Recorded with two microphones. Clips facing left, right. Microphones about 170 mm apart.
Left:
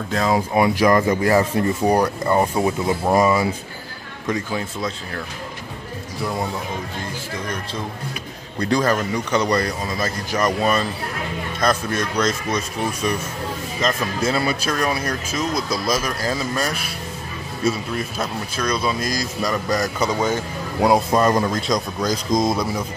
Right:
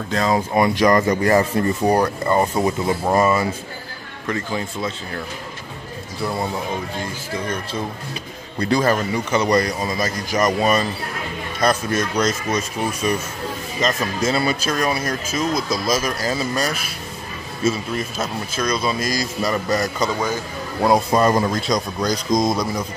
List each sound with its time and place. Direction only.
0.1 s speech: centre (ahead or behind)
4.5 s speech: centre (ahead or behind)
8.5 s speech: 5° right (ahead or behind)
14.7 s speech: 5° right (ahead or behind)
20.0 s speech: 20° left (ahead or behind)
20.8 s speech: centre (ahead or behind)